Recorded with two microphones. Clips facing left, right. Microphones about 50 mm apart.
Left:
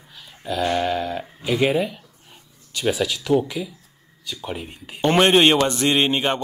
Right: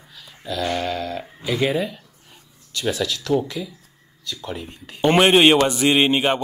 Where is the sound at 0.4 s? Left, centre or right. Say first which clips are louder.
Left 2 dB; centre.